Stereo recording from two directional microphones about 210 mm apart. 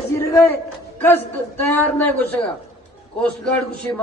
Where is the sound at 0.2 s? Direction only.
15° left (ahead or behind).